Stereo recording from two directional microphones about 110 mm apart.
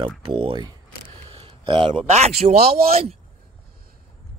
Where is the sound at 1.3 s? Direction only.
55° right (ahead or behind).